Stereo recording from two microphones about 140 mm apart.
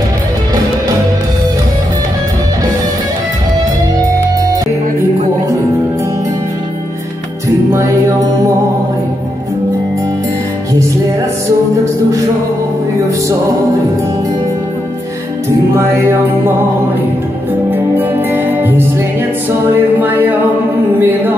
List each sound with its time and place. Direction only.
15.7 s music: 20° right (ahead or behind)
17.6 s music: 15° right (ahead or behind)
21.0 s a sound: 15° right (ahead or behind)